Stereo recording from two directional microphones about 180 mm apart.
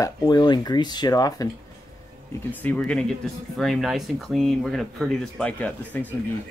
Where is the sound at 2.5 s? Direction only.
10° left (ahead or behind).